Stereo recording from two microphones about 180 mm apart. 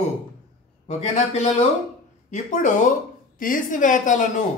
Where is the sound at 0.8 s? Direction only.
40° left (ahead or behind).